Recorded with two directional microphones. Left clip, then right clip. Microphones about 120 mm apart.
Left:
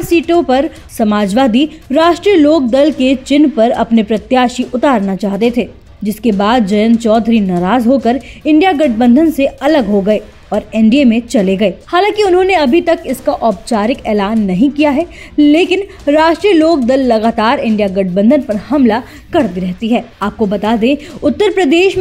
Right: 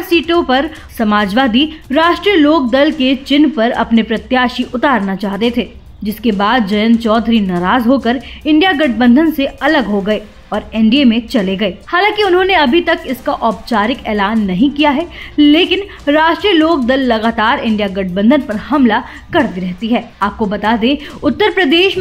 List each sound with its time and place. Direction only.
0.0 s a woman's voice: 50° left (ahead or behind)
21.2 s a woman's voice: 50° left (ahead or behind)